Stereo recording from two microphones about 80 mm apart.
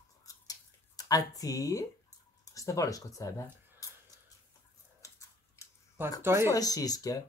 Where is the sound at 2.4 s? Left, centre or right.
Left.